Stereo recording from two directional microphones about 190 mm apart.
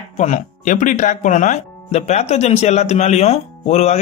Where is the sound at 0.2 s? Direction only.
40° left (ahead or behind).